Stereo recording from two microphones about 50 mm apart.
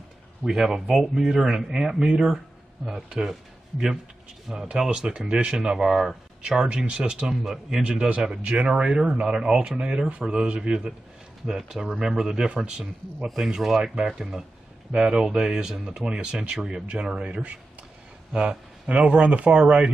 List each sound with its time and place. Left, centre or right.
0.4 s speech: centre
4.5 s speech: centre
7.8 s speech: centre
17.1 s speech: right